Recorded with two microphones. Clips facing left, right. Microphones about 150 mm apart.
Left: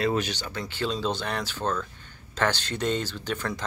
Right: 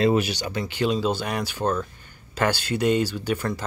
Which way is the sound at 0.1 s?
10° right (ahead or behind).